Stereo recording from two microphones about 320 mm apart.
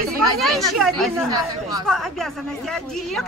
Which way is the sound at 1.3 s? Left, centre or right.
Centre.